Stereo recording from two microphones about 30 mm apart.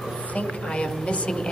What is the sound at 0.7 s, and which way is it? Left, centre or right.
Speech, left.